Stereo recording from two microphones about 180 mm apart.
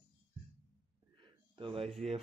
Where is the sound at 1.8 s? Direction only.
Centre (ahead or behind).